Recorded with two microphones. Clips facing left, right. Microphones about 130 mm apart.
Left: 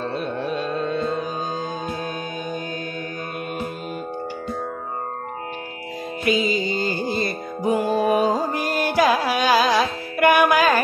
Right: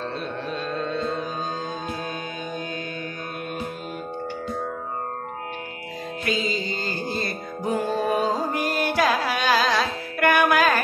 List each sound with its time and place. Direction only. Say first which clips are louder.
0.0 s carnatic music: left 4 dB; 10° left (ahead or behind)
6.2 s music: left 6 dB; 10° left (ahead or behind)
8.5 s carnatic music: left 1 dB; centre (ahead or behind)